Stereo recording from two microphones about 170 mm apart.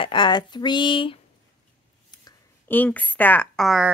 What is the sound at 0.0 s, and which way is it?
Speech, 25° left (ahead or behind).